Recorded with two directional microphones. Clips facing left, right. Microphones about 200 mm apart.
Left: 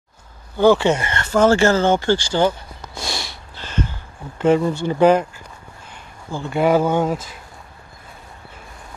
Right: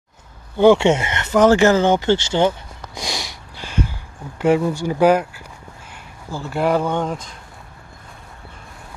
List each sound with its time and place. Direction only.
0.6 s speech: 25° right (ahead or behind); by 5.3 s 5° right (ahead or behind)
6.3 s speech: centre (ahead or behind)